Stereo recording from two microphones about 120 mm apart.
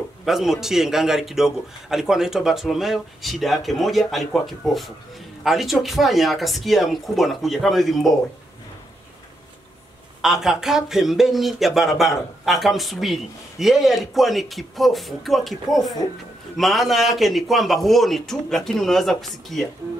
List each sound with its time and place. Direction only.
0.2 s a man's voice: centre (ahead or behind)
10.2 s a man's voice: 5° right (ahead or behind)
16.0 s a man's voice: 30° left (ahead or behind)
16.5 s a man's voice: centre (ahead or behind)